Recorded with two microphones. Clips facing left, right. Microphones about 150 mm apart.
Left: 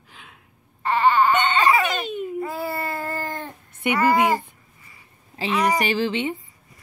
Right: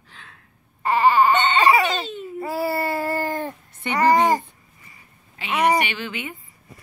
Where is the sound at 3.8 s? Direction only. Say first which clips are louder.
Right 1 dB; 10° left (ahead or behind).